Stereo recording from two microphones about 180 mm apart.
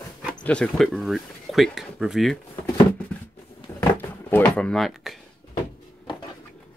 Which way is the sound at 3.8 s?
10° left (ahead or behind).